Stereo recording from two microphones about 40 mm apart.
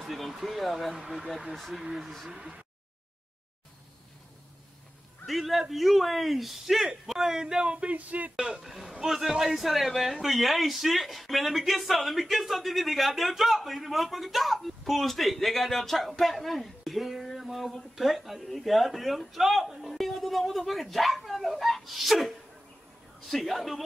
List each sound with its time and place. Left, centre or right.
0.0 s speech: centre
2.3 s speech: right
5.2 s a man's voice: centre
7.7 s speech: right
8.4 s a man's voice: centre